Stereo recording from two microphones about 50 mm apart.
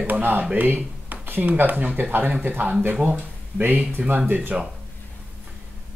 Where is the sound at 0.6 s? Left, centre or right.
Right.